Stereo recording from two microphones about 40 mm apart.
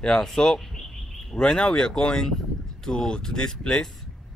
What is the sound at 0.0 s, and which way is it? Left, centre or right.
Speech, centre.